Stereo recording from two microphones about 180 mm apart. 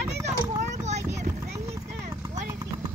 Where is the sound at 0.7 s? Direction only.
40° right (ahead or behind).